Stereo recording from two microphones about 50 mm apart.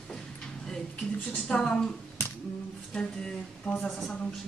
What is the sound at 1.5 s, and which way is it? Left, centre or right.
Speech, centre.